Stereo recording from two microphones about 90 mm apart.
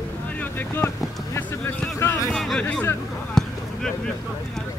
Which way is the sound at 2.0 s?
35° left (ahead or behind).